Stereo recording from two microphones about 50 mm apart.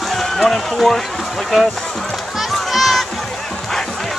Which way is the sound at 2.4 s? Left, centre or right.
Centre.